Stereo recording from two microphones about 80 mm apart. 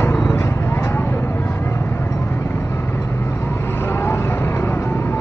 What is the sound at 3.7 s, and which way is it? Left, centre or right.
Vehicle, left.